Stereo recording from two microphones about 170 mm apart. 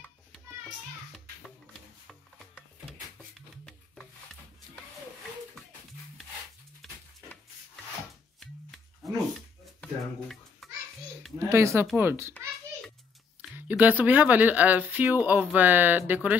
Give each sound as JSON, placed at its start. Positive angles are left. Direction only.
{"t": 0.3, "sound": "children playing", "side_deg": 0}
{"t": 2.0, "sound": "music", "side_deg": 0}
{"t": 3.3, "sound": "a sound", "side_deg": 0}
{"t": 8.4, "sound": "music", "side_deg": 0}
{"t": 9.8, "sound": "a sound", "side_deg": 0}
{"t": 11.3, "sound": "speech", "side_deg": -15}
{"t": 13.4, "sound": "speech", "side_deg": -10}